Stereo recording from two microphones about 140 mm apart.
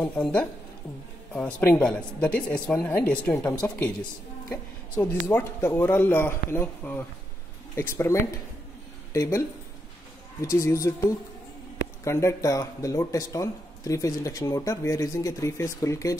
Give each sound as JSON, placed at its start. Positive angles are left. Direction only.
{"t": 0.0, "sound": "a man's voice", "side_deg": 10}
{"t": 4.9, "sound": "a man's voice", "side_deg": 15}
{"t": 10.4, "sound": "speech", "side_deg": 20}